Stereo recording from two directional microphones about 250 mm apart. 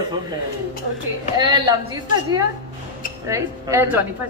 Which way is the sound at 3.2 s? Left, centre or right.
Centre.